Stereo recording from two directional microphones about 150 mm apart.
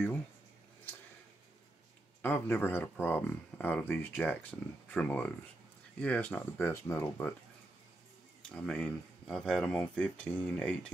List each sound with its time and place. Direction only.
2.2 s speech: 10° left (ahead or behind)
8.4 s speech: 5° left (ahead or behind)